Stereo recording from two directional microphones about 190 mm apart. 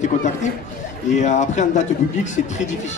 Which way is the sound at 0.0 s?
40° left (ahead or behind).